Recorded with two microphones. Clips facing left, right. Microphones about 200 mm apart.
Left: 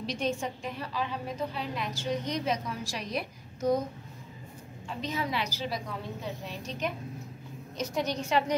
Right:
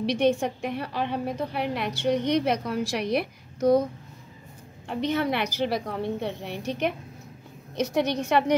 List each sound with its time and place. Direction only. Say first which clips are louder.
0.0 s a woman's voice: right 9 dB; 70° right (ahead or behind)
4.8 s a woman's voice: right 8 dB; 65° right (ahead or behind)